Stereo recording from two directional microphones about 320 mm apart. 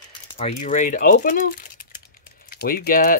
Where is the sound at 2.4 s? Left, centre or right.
Left.